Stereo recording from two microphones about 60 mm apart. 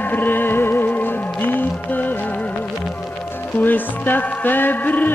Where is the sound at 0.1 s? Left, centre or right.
Left.